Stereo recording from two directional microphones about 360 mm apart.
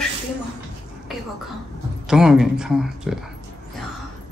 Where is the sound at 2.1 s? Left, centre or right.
Centre.